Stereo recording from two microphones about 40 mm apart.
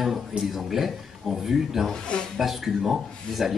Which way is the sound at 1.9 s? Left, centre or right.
Left.